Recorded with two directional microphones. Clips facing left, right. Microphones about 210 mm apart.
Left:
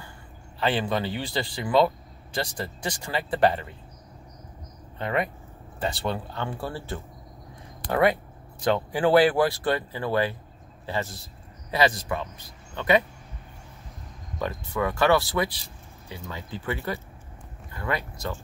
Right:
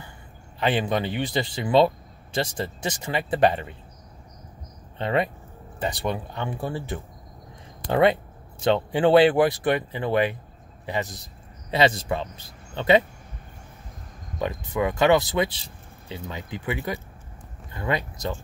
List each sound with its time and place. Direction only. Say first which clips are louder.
0.6 s speech: right 2 dB; 20° right (ahead or behind)
4.9 s speech: right 3 dB; 25° right (ahead or behind)
14.4 s speech: right 2 dB; 15° right (ahead or behind)